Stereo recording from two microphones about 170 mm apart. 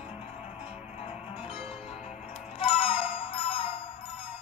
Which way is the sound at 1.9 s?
35° left (ahead or behind).